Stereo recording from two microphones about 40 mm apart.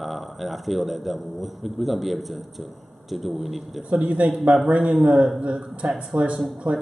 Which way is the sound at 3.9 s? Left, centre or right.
Right.